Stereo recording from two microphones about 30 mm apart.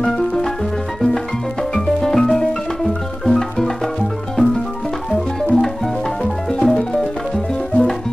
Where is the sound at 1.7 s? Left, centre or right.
Centre.